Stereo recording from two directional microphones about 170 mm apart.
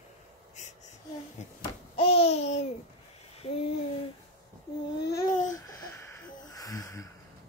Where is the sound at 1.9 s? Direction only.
35° left (ahead or behind).